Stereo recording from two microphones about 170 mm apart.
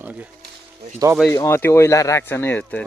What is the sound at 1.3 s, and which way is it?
Speech, 15° left (ahead or behind).